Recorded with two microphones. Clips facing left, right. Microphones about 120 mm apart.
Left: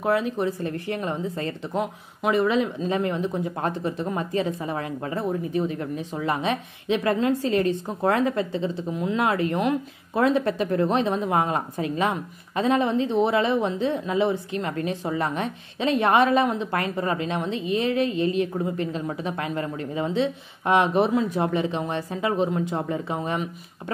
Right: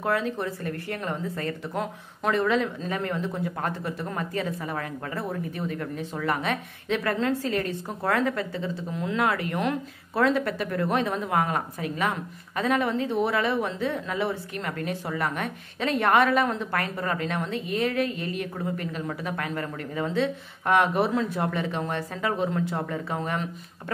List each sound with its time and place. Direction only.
0.0 s speech: 15° left (ahead or behind)